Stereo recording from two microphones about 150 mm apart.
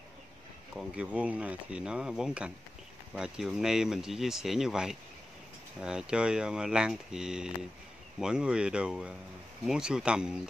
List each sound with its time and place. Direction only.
0.7 s speech: 10° right (ahead or behind)